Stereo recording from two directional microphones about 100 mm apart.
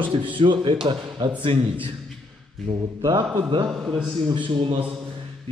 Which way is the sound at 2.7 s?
55° right (ahead or behind).